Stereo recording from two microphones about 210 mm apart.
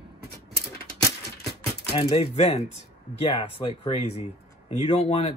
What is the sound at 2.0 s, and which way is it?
Speech, 30° left (ahead or behind).